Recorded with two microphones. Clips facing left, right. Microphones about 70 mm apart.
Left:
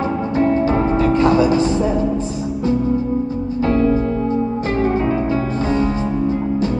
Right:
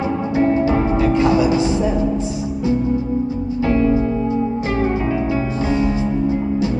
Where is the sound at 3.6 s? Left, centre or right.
Left.